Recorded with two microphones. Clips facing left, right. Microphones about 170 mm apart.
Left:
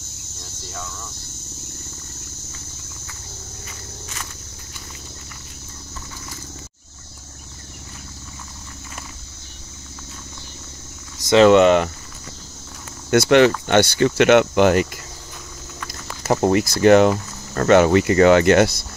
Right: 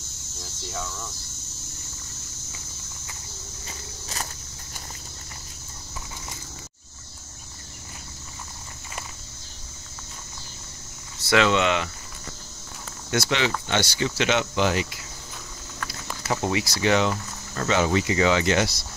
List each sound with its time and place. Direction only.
3.6 s walk: 35° right (ahead or behind)
11.4 s speech: 50° left (ahead or behind)
13.1 s speech: 55° left (ahead or behind)
15.9 s speech: 45° left (ahead or behind)